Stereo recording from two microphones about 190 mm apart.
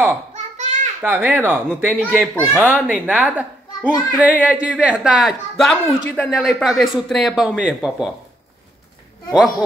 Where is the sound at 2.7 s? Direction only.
5° right (ahead or behind).